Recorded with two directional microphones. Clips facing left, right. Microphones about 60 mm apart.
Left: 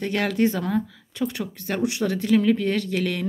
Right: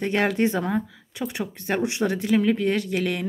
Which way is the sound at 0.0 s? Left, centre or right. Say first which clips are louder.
Even; right.